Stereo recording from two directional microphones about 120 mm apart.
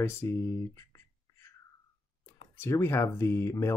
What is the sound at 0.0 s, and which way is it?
Speech, 20° left (ahead or behind).